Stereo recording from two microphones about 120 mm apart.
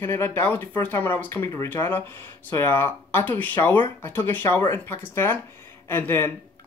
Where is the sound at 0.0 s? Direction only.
20° left (ahead or behind).